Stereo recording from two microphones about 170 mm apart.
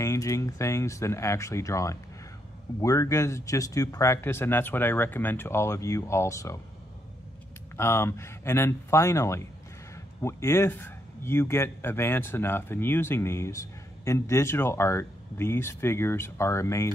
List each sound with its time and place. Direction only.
0.0 s speech: 20° left (ahead or behind)
7.7 s speech: 15° left (ahead or behind)